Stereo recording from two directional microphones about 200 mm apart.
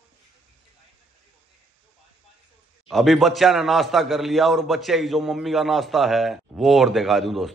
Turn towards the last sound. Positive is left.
turn(degrees=0)  # may be behind; listen again after turning